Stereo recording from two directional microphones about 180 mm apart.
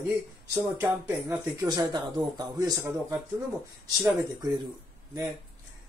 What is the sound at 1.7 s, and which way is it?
Speech, 20° right (ahead or behind).